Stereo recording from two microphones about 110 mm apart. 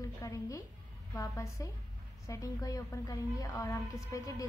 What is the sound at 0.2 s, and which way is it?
A woman's voice, 30° left (ahead or behind).